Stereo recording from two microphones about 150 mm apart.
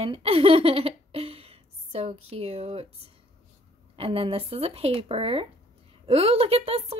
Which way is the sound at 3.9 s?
40° right (ahead or behind).